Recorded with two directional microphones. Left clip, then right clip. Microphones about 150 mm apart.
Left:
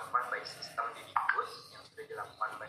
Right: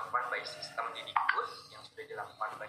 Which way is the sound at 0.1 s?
25° right (ahead or behind).